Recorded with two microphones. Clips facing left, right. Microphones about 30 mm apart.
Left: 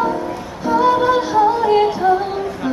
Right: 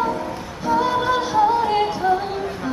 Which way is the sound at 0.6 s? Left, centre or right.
Centre.